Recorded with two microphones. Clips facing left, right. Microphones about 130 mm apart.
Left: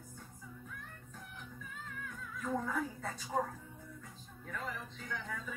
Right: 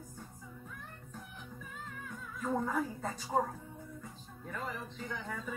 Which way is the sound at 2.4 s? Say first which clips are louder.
Right 3 dB; 35° right (ahead or behind).